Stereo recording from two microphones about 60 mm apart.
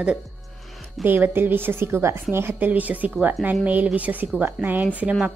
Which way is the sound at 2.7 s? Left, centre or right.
Right.